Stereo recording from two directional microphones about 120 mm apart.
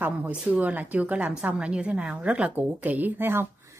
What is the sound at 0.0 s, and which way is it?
A woman's voice, 10° right (ahead or behind).